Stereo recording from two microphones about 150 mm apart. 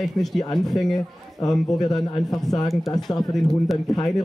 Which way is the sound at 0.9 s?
25° left (ahead or behind).